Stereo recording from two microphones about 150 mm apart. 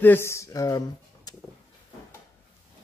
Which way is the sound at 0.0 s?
15° left (ahead or behind).